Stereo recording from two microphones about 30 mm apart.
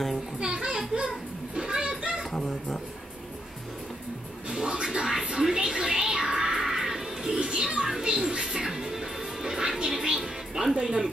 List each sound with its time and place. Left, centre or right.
0.4 s children playing: right
2.3 s a sound: centre
4.5 s music: right
5.0 s speech: centre
5.5 s music: right
7.3 s bird: right
8.0 s music: right